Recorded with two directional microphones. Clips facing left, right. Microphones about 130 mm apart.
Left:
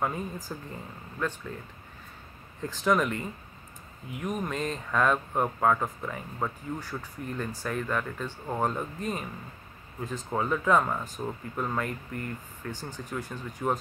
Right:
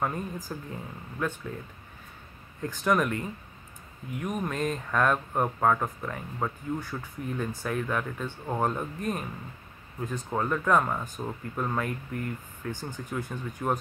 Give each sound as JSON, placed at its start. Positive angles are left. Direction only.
{"t": 0.0, "sound": "speech", "side_deg": 0}
{"t": 2.6, "sound": "speech", "side_deg": 0}